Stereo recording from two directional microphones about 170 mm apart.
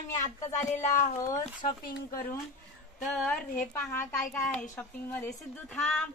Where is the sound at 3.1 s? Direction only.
5° left (ahead or behind).